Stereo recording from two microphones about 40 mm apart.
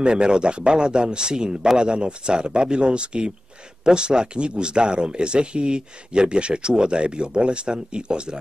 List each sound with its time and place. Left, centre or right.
0.0 s speech: right